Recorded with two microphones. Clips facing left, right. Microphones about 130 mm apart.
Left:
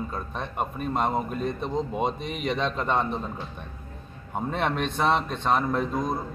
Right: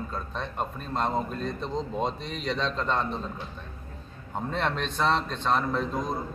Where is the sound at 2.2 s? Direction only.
55° left (ahead or behind).